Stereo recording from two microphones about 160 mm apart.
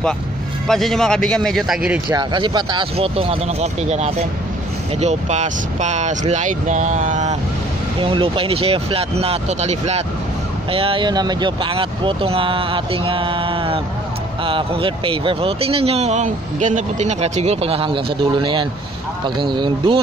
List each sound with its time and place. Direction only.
0.7 s a man's voice: centre (ahead or behind)
2.1 s speech: 30° right (ahead or behind); by 7.3 s 50° right (ahead or behind)
8.0 s speech: 35° right (ahead or behind)